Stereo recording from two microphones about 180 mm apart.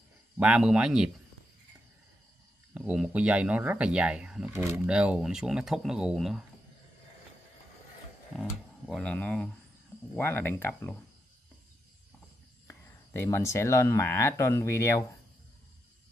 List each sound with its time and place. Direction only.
0.4 s speech: 5° right (ahead or behind)
2.7 s speech: 5° right (ahead or behind)
8.4 s speech: 5° left (ahead or behind)
12.6 s speech: 15° left (ahead or behind)